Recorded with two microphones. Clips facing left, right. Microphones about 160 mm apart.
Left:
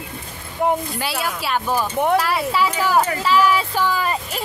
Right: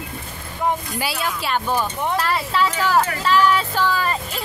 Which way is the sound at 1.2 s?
5° left (ahead or behind).